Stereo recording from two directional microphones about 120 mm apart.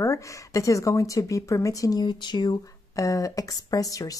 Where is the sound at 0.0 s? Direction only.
25° left (ahead or behind).